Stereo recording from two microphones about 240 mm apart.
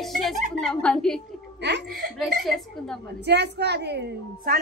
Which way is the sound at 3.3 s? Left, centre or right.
Right.